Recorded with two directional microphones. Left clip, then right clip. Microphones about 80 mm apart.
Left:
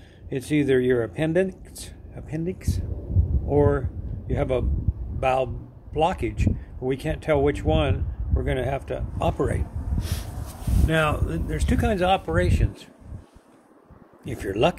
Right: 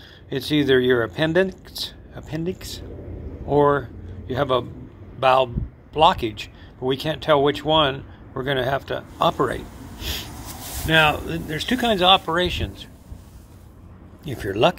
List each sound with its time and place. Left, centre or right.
0.3 s speech: left
3.4 s speech: left
5.9 s speech: left
7.6 s speech: centre
9.9 s snort: left
10.9 s speech: left
14.2 s speech: left